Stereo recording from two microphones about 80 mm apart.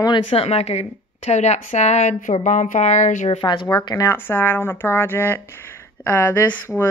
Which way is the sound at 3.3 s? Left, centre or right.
Left.